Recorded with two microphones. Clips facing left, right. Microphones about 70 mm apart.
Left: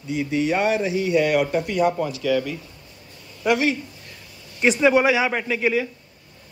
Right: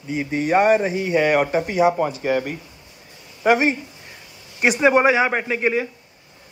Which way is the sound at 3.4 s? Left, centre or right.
Right.